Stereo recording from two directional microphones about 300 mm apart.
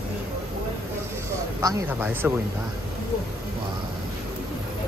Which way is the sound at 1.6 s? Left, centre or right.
Centre.